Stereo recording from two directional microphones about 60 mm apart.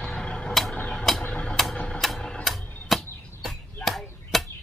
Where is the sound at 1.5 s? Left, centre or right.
Centre.